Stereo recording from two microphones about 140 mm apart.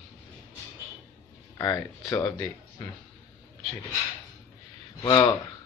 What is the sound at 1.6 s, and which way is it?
Speech, 25° left (ahead or behind).